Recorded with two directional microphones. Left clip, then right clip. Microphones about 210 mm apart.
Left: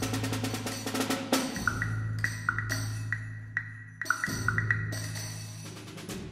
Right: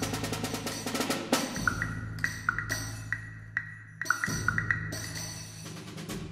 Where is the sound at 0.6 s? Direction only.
35° left (ahead or behind).